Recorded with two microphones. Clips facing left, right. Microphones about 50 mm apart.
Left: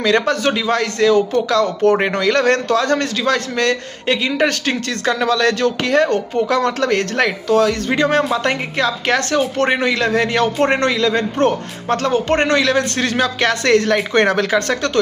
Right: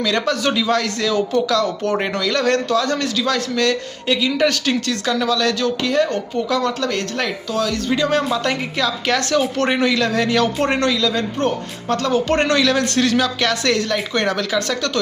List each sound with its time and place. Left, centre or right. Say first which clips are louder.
0.0 s speech: left 3 dB; left